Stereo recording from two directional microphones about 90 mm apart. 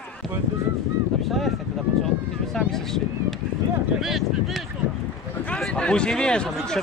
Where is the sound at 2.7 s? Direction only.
5° left (ahead or behind).